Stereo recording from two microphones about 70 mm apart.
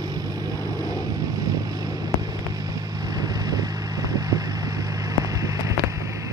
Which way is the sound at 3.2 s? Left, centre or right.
Right.